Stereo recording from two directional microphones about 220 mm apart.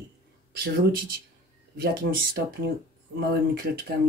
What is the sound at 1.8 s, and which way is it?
Speech, 45° right (ahead or behind).